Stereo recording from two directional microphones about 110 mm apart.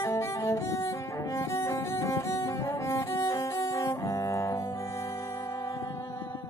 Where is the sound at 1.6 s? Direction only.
25° left (ahead or behind).